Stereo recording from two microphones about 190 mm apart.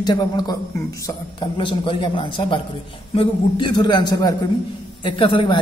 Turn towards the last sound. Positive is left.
turn(degrees=25)  # may be behind; listen again after turning